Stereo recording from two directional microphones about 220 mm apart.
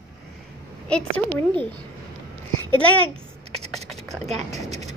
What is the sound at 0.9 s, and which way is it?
Speech, 5° left (ahead or behind).